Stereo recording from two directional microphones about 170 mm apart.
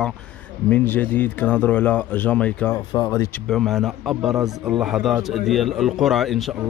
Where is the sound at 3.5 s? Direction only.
Centre (ahead or behind).